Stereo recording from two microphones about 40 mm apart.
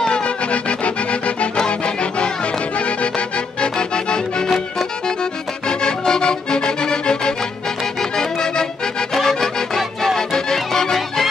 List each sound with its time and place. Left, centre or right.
0.0 s music: left
5.7 s music: centre
8.0 s accordion: centre
9.1 s music: centre